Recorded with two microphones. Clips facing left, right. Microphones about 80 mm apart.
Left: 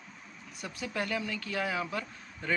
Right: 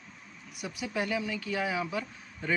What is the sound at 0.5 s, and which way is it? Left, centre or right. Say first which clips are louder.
Speech: right 2 dB; centre.